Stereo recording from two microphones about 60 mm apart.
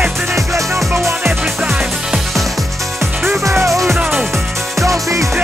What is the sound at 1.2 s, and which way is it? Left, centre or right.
Music, centre.